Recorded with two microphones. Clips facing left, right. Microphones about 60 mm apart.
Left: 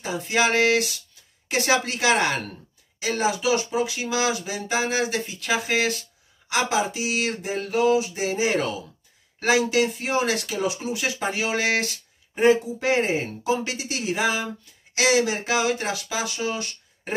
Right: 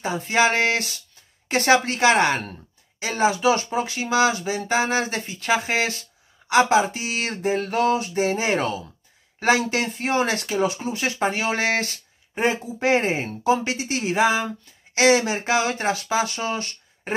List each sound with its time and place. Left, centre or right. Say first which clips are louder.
0.0 s speech: right 3 dB; right